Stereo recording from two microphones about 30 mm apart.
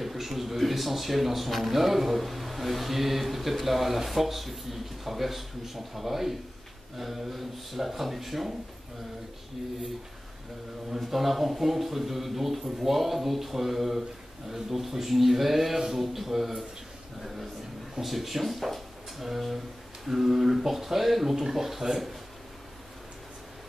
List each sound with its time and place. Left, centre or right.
0.0 s speech: centre
11.0 s a man's voice: centre
18.0 s a man's voice: centre